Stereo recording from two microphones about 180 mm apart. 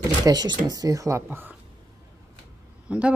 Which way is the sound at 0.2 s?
20° right (ahead or behind).